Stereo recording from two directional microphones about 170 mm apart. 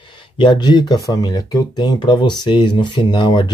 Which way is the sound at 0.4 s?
25° left (ahead or behind).